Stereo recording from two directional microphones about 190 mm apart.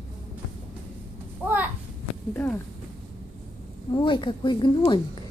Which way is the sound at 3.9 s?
25° left (ahead or behind).